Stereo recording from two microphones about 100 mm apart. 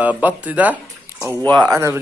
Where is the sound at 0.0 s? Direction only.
15° right (ahead or behind).